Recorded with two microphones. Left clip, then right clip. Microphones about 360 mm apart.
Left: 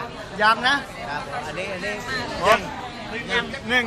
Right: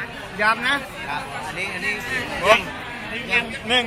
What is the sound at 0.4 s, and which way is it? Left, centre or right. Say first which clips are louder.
Speech: left 1 dB; centre.